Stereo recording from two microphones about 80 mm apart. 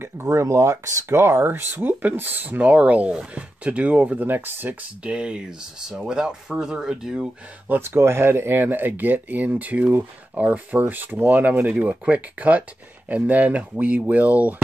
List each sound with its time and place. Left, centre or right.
0.0 s speech: right
5.1 s speech: centre
7.6 s speech: right